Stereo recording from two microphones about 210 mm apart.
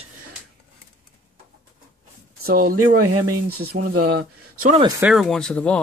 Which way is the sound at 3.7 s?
45° right (ahead or behind).